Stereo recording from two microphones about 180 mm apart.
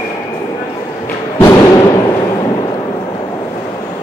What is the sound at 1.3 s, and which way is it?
Music, 20° left (ahead or behind).